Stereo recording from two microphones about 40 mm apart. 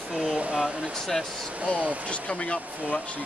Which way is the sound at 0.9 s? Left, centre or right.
Centre.